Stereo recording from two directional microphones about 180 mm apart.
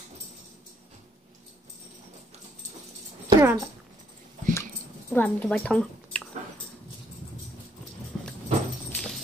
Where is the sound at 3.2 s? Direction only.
15° right (ahead or behind).